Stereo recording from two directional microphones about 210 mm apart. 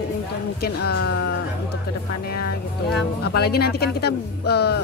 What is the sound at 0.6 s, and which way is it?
Speech, 50° left (ahead or behind).